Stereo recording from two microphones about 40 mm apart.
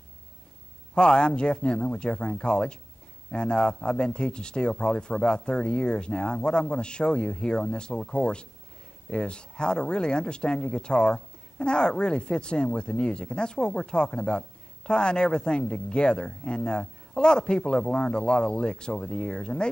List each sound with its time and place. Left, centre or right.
0.9 s speech: left